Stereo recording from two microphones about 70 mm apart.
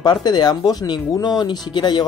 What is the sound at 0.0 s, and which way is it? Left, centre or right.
Speech, left.